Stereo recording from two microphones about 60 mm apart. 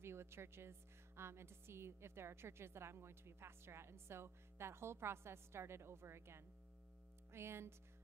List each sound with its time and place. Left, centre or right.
0.0 s a woman's voice: right